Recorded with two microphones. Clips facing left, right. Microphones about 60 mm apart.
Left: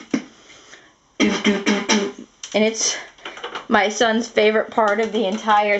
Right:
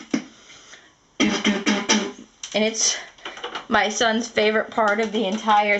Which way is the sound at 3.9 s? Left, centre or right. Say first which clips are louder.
Left 3 dB; centre.